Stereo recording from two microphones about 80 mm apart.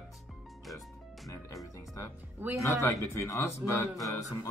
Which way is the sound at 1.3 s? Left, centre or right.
Left.